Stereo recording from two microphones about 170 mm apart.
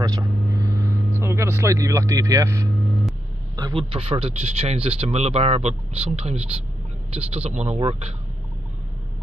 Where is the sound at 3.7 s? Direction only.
35° right (ahead or behind).